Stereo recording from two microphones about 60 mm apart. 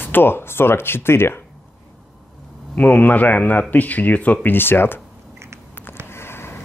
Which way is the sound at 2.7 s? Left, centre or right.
Left.